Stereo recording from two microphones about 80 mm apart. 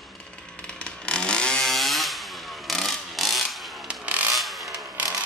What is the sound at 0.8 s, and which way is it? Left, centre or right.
Chainsaw, centre.